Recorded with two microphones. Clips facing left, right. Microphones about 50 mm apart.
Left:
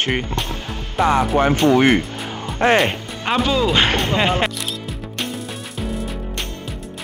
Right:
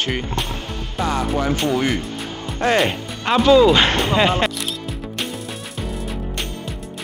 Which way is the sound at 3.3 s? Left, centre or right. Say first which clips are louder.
Right 5 dB; centre.